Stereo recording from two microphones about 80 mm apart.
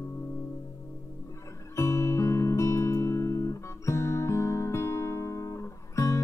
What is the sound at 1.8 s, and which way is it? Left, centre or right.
Guitar, left.